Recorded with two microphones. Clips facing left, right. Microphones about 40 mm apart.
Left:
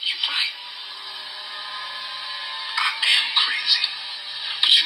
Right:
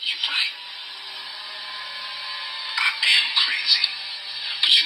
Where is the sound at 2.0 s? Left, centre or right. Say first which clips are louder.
Left 1 dB; left.